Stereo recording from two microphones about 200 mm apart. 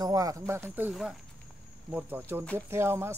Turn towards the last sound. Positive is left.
turn(degrees=-10)  # may be behind; listen again after turning